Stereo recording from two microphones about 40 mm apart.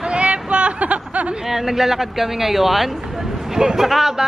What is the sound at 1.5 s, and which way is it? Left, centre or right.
Speech, centre.